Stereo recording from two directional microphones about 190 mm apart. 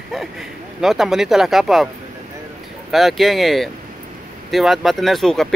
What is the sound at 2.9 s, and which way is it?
Speech, centre (ahead or behind).